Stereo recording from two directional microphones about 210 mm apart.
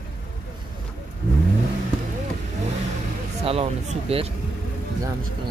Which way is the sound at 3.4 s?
30° right (ahead or behind).